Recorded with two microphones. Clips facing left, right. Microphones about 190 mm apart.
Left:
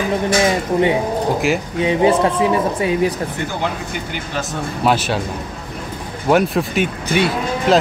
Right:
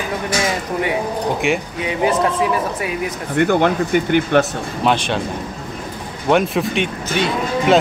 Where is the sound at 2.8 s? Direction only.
30° left (ahead or behind).